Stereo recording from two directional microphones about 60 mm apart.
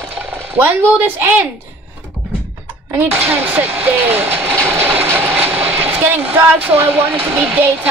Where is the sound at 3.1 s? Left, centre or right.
Right.